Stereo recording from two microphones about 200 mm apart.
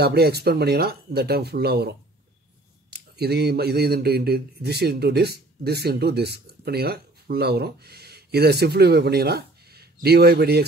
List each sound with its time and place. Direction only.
0.0 s speech: 50° right (ahead or behind)